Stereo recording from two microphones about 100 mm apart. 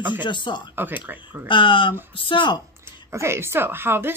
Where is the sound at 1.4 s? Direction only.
60° left (ahead or behind).